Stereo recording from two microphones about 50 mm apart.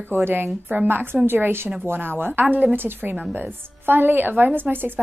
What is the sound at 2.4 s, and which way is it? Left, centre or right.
A woman's voice, right.